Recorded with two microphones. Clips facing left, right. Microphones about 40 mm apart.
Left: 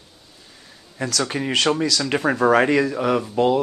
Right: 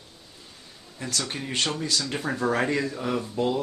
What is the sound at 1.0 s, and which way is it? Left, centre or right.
Speech, left.